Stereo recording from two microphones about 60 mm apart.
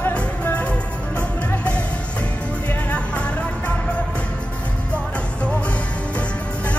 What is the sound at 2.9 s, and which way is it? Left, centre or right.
Music, left.